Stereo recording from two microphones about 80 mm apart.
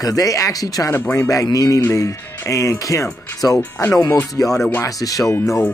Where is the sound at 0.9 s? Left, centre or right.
Left.